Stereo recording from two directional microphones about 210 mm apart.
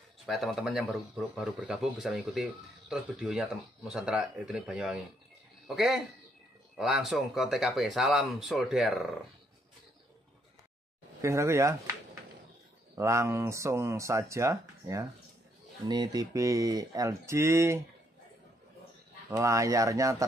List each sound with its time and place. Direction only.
0.3 s a man's voice: centre (ahead or behind)
11.1 s speech: 15° right (ahead or behind)
19.3 s speech: 15° right (ahead or behind)